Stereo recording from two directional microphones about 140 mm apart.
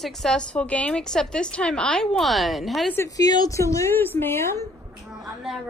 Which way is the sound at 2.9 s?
25° left (ahead or behind).